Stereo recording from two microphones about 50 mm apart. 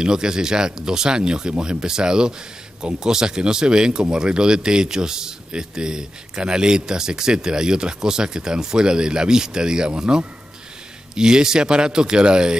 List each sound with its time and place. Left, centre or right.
0.0 s speech: centre